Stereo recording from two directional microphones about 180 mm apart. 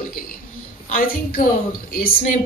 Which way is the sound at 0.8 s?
45° left (ahead or behind).